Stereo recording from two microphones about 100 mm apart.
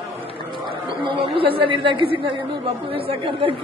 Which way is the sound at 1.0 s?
60° right (ahead or behind).